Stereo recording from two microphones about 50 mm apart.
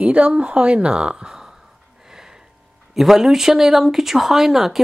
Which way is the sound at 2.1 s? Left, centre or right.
Centre.